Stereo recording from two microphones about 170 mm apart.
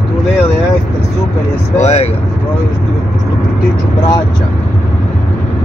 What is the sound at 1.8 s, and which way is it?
Speech, 40° left (ahead or behind).